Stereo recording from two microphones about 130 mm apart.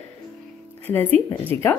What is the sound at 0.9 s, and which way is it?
Speech, 15° left (ahead or behind).